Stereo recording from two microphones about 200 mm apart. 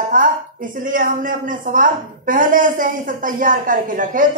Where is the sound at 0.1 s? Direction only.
40° right (ahead or behind).